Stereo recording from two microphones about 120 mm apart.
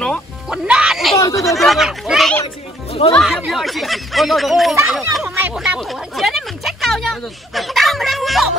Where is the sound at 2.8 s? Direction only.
55° left (ahead or behind).